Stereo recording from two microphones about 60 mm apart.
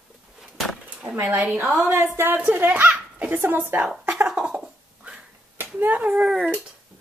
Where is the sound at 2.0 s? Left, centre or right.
Right.